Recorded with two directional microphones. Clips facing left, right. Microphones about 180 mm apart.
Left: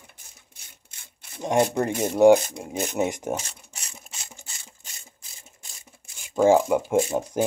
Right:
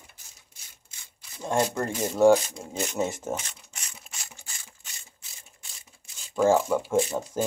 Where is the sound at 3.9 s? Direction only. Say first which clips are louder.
Left 2 dB; 25° left (ahead or behind).